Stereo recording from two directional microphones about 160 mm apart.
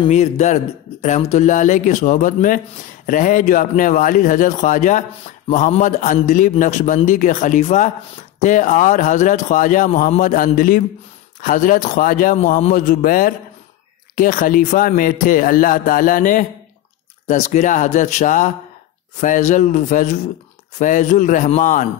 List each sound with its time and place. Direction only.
0.1 s speech: 45° left (ahead or behind)
12.4 s speech: 45° left (ahead or behind)